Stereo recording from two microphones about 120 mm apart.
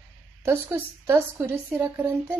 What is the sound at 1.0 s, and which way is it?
A woman's voice, 20° right (ahead or behind).